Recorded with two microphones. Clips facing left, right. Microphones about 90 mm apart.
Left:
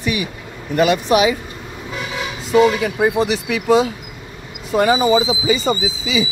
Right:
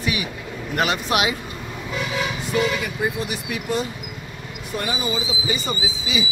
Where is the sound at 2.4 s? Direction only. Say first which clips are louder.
Left 11 dB; 80° left.